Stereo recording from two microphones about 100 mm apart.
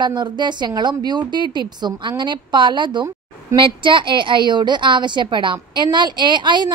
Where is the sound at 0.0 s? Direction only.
45° right (ahead or behind).